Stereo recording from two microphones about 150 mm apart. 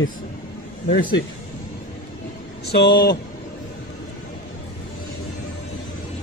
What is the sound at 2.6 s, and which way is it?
Speech, 90° left.